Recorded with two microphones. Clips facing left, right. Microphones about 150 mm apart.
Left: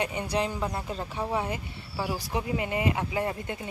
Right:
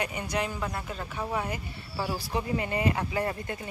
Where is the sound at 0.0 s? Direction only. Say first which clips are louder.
Left 2 dB; 25° left (ahead or behind).